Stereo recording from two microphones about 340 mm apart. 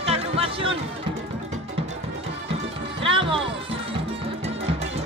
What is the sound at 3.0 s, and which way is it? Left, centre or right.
Music, centre.